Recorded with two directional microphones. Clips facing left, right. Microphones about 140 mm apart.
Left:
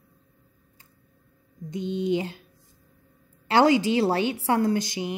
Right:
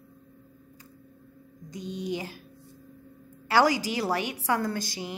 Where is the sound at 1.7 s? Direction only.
25° left (ahead or behind).